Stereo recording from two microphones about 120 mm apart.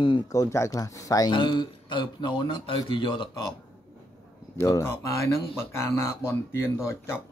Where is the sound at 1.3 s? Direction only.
40° left (ahead or behind).